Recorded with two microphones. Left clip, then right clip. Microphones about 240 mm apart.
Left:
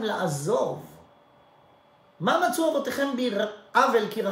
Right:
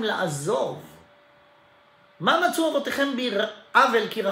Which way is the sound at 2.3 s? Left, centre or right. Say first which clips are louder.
Right 2 dB; centre.